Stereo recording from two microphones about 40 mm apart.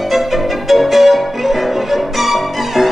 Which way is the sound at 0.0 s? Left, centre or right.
Centre.